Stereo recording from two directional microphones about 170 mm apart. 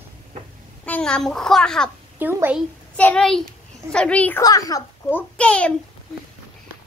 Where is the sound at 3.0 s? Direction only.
5° left (ahead or behind).